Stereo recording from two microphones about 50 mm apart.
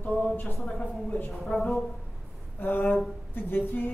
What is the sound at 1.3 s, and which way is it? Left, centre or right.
Speech, centre.